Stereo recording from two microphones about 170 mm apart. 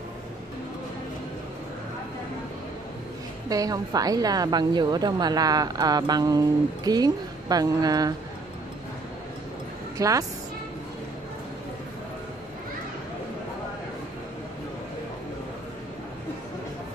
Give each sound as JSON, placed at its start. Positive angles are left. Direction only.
{"t": 3.4, "sound": "a woman's voice", "side_deg": -20}
{"t": 9.9, "sound": "a woman's voice", "side_deg": -20}